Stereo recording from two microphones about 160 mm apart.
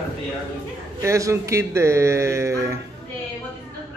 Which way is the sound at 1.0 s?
20° right (ahead or behind).